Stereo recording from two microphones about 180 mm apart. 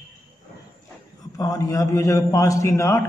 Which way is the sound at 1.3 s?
20° left (ahead or behind).